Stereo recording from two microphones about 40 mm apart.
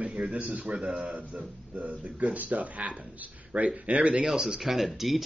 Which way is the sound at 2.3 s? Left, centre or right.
Right.